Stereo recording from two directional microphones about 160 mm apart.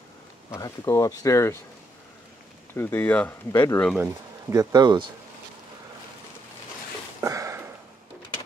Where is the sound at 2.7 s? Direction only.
10° left (ahead or behind).